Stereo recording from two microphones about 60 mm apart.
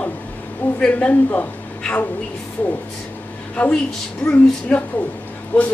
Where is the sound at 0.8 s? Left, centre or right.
Centre.